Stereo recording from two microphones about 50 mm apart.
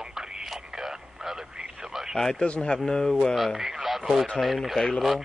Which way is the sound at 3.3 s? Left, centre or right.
Centre.